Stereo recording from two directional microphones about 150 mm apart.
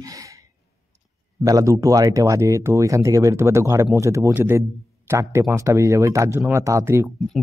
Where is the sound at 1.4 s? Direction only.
20° right (ahead or behind).